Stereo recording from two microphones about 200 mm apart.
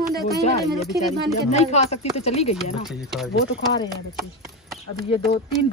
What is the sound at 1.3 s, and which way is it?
Speech, 30° left (ahead or behind).